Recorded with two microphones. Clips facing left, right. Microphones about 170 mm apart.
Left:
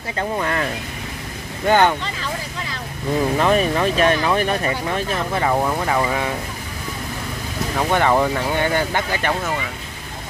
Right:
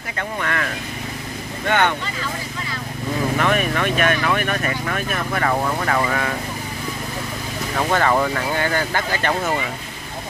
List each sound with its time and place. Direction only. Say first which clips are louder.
0.2 s speech: left 3 dB; 25° left (ahead or behind)
1.7 s speech: left 4 dB; 35° left (ahead or behind)
3.3 s speech: left 2 dB; 30° left (ahead or behind)
5.5 s speech: left 1 dB; 10° left (ahead or behind)
7.9 s speech: left 1 dB; 15° left (ahead or behind)